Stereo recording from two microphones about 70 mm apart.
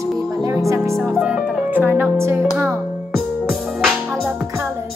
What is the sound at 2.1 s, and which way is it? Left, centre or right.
Music, right.